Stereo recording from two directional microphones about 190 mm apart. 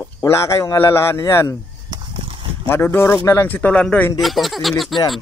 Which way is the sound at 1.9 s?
20° right (ahead or behind).